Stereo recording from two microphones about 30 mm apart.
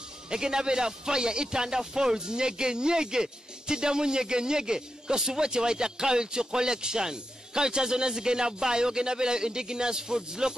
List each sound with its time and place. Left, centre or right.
0.3 s speech: right